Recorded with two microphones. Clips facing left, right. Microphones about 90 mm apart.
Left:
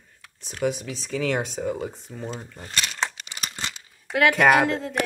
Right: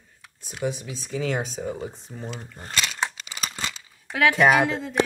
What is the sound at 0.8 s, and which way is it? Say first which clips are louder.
Speech: left 2 dB; 75° left (ahead or behind).